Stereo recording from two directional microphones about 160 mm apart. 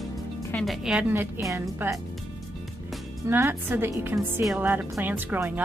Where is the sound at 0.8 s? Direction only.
10° right (ahead or behind).